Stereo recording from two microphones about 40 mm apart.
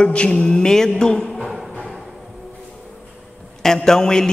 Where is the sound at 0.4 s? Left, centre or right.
Centre.